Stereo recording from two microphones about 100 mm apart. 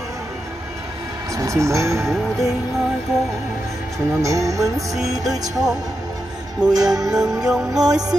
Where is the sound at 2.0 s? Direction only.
Centre (ahead or behind).